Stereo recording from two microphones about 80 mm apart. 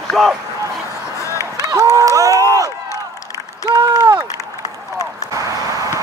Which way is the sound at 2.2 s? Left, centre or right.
Right.